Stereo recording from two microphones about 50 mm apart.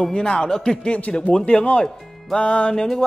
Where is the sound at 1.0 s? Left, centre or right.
Left.